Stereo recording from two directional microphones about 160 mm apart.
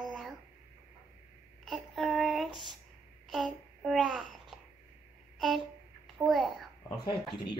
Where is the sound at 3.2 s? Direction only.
Centre (ahead or behind).